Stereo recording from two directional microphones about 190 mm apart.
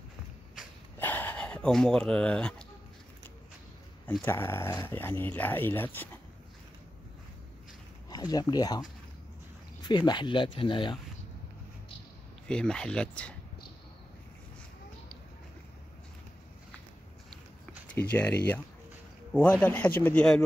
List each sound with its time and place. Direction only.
0.9 s a sound: 10° left (ahead or behind)
4.2 s speech: 10° left (ahead or behind)
8.1 s speech: 20° left (ahead or behind)
9.8 s speech: 25° left (ahead or behind)
12.4 s speech: 5° left (ahead or behind)
18.1 s speech: 10° left (ahead or behind)
19.6 s speech: 10° left (ahead or behind)